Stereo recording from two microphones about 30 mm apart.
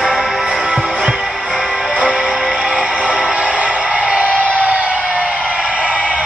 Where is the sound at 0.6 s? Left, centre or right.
Right.